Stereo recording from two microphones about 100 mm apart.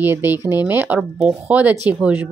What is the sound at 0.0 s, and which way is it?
Speech, 20° right (ahead or behind).